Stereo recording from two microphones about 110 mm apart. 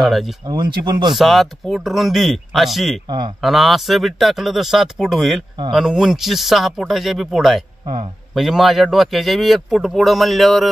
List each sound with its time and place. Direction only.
0.0 s speech: centre (ahead or behind)
0.5 s speech: 40° right (ahead or behind)
1.1 s speech: centre (ahead or behind)